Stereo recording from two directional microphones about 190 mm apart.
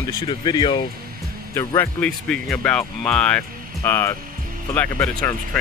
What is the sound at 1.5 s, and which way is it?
Speech, 15° left (ahead or behind).